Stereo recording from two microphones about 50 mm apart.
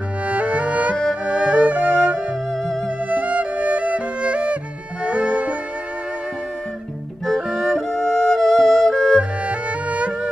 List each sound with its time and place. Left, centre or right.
0.3 s music: right
7.3 s music: centre
7.7 s music: centre
9.5 s music: right